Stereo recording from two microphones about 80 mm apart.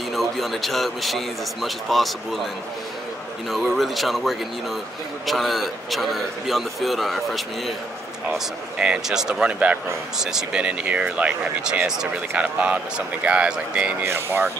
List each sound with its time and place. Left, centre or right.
0.1 s a man's voice: centre
8.7 s speech: centre
9.3 s speech: centre
14.0 s speech: right